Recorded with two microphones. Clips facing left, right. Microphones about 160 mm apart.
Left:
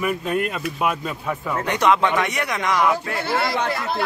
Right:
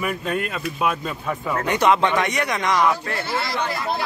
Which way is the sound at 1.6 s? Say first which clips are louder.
Even; centre (ahead or behind).